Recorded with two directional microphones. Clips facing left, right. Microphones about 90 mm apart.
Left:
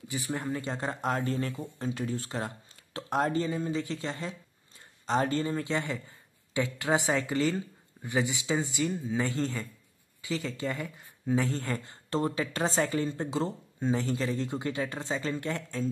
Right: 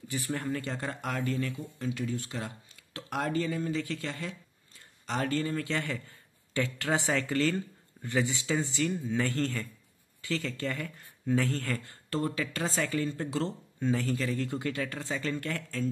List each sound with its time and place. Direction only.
0.1 s speech: 20° left (ahead or behind)